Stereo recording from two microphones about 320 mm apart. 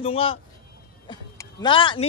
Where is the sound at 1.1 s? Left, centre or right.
Centre.